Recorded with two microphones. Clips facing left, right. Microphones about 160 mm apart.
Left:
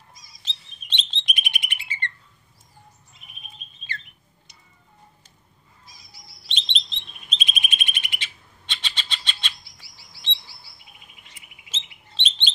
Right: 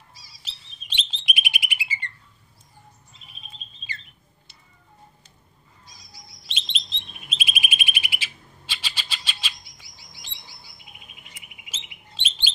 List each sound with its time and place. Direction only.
0.1 s chirp: 30° right (ahead or behind)
0.4 s chirp: 10° right (ahead or behind)
3.2 s chirp: 30° right (ahead or behind)
6.4 s chirp: 5° right (ahead or behind)
9.6 s chirp: 20° right (ahead or behind)
11.4 s bird: 20° right (ahead or behind)
12.2 s bird: 5° right (ahead or behind)